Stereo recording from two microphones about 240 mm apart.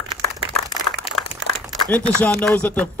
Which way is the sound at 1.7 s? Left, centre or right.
Centre.